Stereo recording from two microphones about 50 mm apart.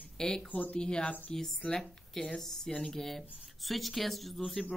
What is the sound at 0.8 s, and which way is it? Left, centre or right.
Speech, centre.